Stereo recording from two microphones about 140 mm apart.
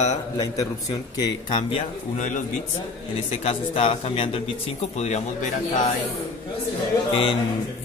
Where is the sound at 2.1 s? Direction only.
65° left (ahead or behind).